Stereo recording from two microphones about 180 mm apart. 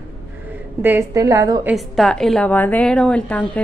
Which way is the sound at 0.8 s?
15° right (ahead or behind).